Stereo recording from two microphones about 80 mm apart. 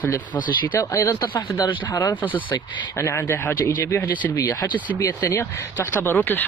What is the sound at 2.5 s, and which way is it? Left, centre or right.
Speech, left.